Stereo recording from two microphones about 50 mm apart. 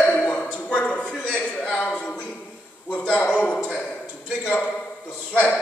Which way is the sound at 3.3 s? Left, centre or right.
Left.